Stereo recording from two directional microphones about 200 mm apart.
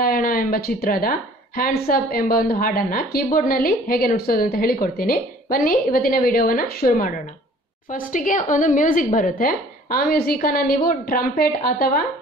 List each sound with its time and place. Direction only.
0.0 s a woman's voice: 45° left (ahead or behind)